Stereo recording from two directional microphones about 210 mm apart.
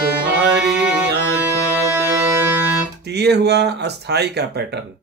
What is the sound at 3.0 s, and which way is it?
Speech, 50° right (ahead or behind).